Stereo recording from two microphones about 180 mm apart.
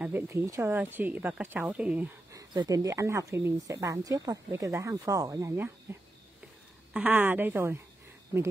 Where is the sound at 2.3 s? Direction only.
20° right (ahead or behind).